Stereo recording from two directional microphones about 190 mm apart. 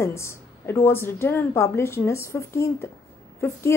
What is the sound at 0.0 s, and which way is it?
A woman's voice, 15° left (ahead or behind).